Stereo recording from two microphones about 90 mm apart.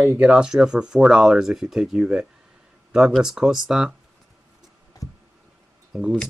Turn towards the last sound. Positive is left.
turn(degrees=-10)  # may be behind; listen again after turning